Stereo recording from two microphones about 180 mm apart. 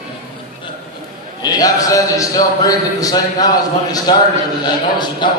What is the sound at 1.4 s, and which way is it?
A man's voice, 20° left (ahead or behind).